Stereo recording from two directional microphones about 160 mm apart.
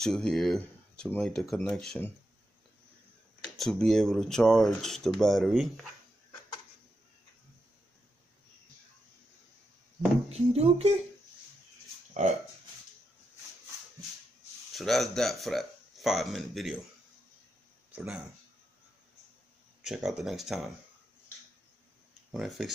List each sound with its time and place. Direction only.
0.0 s speech: 5° left (ahead or behind)
3.4 s speech: centre (ahead or behind)
10.3 s speech: 40° right (ahead or behind)
12.1 s speech: 45° right (ahead or behind)
14.7 s speech: centre (ahead or behind)
17.9 s speech: 5° right (ahead or behind)
19.8 s speech: centre (ahead or behind)
22.3 s speech: centre (ahead or behind)